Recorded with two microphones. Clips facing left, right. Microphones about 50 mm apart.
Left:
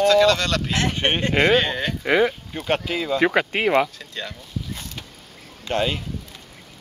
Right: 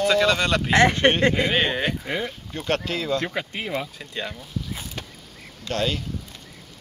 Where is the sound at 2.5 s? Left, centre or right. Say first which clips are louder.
Left 2 dB; centre.